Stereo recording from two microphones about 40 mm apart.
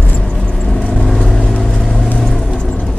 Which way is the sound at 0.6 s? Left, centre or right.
Centre.